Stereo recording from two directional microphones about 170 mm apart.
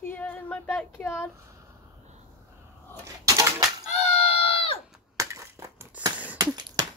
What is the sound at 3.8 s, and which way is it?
Screaming, 40° left (ahead or behind).